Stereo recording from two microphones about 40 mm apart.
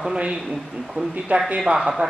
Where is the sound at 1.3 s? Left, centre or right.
Right.